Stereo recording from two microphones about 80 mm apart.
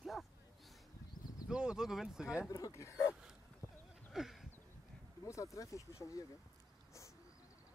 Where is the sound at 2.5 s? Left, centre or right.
Left.